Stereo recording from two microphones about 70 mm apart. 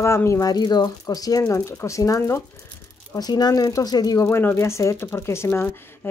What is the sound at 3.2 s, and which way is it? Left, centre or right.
Speech, left.